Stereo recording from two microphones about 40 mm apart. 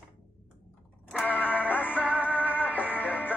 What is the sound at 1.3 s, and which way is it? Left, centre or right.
Music, left.